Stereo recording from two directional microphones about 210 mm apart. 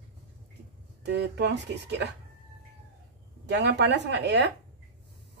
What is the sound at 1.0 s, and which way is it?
Speech, 55° right (ahead or behind).